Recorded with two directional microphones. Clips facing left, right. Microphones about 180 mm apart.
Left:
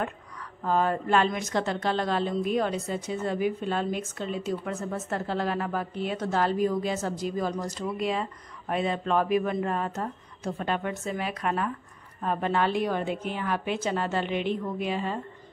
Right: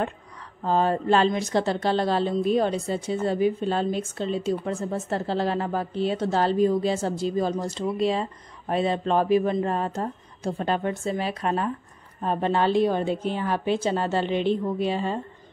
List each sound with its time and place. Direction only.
0.0 s speech: 30° right (ahead or behind)